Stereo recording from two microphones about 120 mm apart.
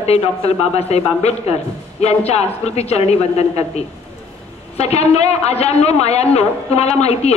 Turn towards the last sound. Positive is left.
turn(degrees=60)  # may be behind; listen again after turning